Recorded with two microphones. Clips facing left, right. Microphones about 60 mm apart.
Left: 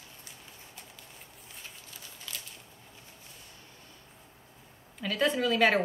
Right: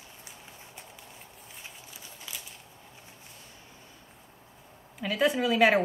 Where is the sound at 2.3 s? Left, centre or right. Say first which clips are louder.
Even; centre.